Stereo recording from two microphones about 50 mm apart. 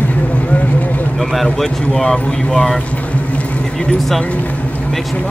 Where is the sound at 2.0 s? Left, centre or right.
Centre.